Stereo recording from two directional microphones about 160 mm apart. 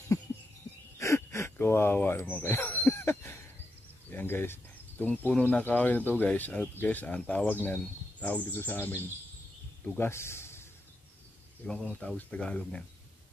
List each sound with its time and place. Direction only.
0.9 s a sound: 15° left (ahead or behind)
4.1 s speech: 15° left (ahead or behind)
11.6 s speech: 5° left (ahead or behind)